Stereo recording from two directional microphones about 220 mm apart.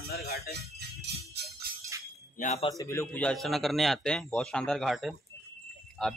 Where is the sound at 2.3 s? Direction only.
30° left (ahead or behind).